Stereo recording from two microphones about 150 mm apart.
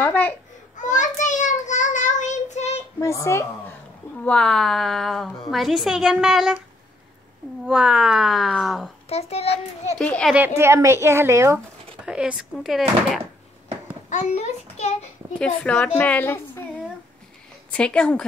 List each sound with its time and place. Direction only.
0.0 s baby cry: 15° left (ahead or behind)
0.7 s child singing: 55° left (ahead or behind)
3.0 s speech: 20° left (ahead or behind)
4.2 s speech: 5° left (ahead or behind)
7.6 s speech: 5° right (ahead or behind)
9.1 s a child's voice: 45° left (ahead or behind)
9.9 s a woman's voice: 5° left (ahead or behind)
10.3 s speech: 15° right (ahead or behind)
12.1 s speech: 5° right (ahead or behind)
14.0 s a child's voice: 50° left (ahead or behind)
15.3 s a woman's voice: 5° left (ahead or behind)
17.7 s a woman's voice: 5° left (ahead or behind)